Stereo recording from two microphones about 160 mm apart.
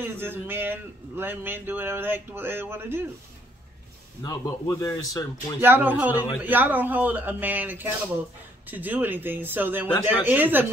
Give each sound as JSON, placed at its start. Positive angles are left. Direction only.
{"t": 0.0, "sound": "speech", "side_deg": -15}
{"t": 4.2, "sound": "a man's voice", "side_deg": 20}
{"t": 5.6, "sound": "speech", "side_deg": -10}